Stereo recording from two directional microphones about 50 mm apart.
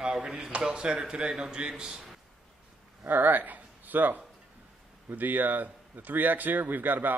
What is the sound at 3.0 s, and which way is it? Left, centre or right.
Speech, right.